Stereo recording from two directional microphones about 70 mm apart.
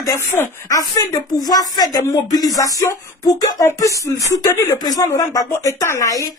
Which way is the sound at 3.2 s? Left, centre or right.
Left.